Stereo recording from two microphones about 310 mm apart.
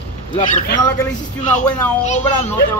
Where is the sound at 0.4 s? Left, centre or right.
Left.